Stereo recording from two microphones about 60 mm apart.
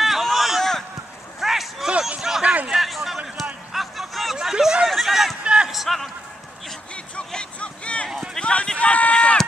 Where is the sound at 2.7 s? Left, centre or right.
Centre.